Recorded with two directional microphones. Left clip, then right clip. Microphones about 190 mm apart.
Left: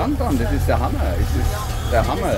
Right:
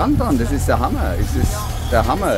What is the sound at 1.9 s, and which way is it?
Speech, 30° right (ahead or behind).